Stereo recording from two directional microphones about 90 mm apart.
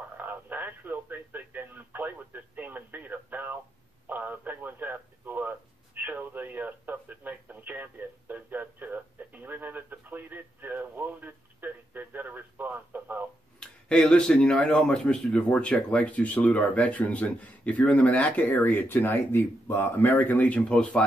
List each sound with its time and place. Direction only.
0.2 s a man's voice: 20° right (ahead or behind)
13.6 s speech: 10° left (ahead or behind)